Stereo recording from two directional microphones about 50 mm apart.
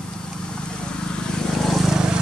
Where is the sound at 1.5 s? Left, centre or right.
Centre.